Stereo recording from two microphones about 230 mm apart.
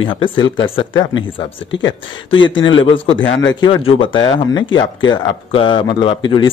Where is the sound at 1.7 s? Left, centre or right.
Left.